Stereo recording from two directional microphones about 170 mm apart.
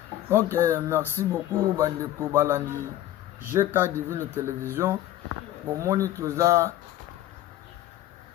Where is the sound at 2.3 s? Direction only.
15° right (ahead or behind).